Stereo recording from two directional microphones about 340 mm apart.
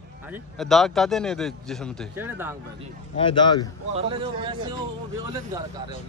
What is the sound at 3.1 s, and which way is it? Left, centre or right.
Speech, centre.